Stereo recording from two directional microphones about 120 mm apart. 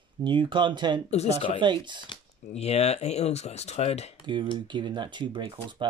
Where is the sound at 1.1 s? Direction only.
65° left (ahead or behind).